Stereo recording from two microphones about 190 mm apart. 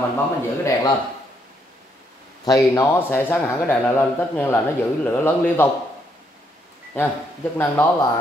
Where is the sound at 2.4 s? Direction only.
15° left (ahead or behind).